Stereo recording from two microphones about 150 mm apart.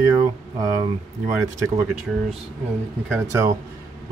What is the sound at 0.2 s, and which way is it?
Speech, 20° right (ahead or behind).